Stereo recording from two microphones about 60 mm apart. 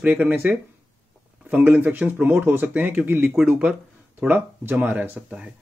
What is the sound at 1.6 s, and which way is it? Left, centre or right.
Speech, right.